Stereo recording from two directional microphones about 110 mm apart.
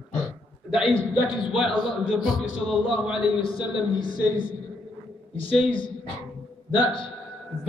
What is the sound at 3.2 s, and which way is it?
Speech, 50° left (ahead or behind).